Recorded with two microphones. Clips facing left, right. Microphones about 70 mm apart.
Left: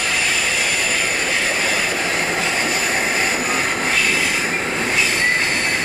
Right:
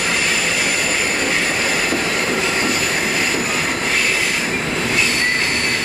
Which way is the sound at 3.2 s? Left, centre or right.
Centre.